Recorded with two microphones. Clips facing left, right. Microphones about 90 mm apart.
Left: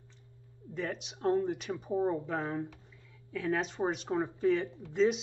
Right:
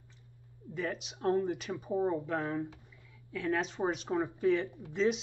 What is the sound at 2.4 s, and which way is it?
Speech, 15° left (ahead or behind).